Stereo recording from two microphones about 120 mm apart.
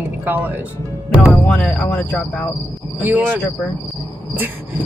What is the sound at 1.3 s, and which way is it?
Speech, 5° left (ahead or behind).